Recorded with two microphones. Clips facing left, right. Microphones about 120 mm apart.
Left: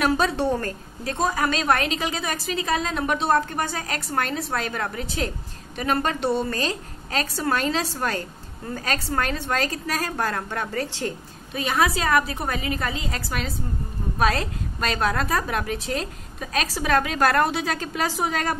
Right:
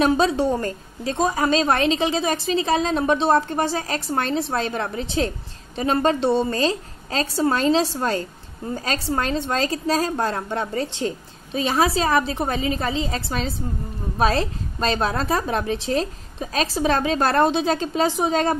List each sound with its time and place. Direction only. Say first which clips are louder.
0.0 s a woman's voice: right 3 dB; 25° right (ahead or behind)